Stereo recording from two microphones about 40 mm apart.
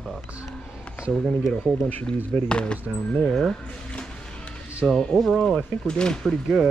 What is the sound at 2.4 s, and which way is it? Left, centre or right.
Speech, left.